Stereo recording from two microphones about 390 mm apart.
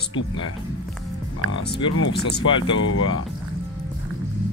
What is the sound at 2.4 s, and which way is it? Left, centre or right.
Speech, centre.